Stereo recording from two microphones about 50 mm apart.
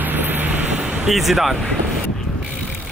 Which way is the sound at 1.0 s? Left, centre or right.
Centre.